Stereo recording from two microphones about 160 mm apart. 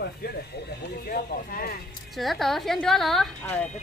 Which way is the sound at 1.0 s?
65° left (ahead or behind).